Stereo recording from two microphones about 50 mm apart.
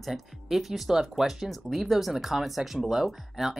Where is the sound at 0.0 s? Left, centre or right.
Centre.